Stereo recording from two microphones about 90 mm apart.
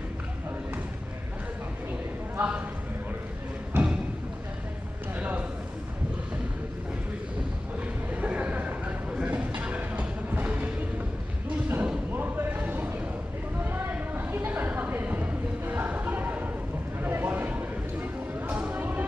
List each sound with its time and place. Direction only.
2.3 s a man's voice: 15° right (ahead or behind)
3.7 s thump: 10° right (ahead or behind)
8.1 s a sound: 15° right (ahead or behind)
9.1 s music: 15° right (ahead or behind)
11.7 s basketball bounce: 20° right (ahead or behind)
13.6 s a sound: 25° right (ahead or behind)
18.5 s music: 15° right (ahead or behind)